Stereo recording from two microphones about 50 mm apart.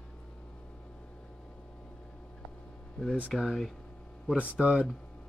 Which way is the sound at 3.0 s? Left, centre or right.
Centre.